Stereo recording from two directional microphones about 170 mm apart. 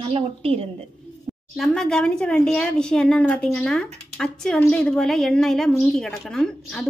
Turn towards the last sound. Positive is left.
turn(degrees=5)  # may be behind; listen again after turning